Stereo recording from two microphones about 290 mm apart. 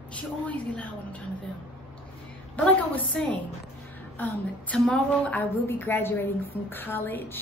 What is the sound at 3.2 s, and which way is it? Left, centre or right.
A woman's voice, centre.